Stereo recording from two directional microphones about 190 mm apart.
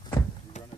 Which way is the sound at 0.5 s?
40° left (ahead or behind).